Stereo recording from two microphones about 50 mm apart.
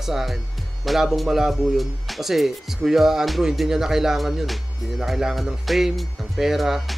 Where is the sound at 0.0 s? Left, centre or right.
Centre.